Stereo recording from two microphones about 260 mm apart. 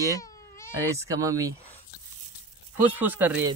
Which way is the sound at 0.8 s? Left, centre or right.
Centre.